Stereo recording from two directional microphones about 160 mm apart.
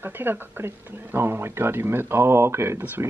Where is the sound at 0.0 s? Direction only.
10° right (ahead or behind).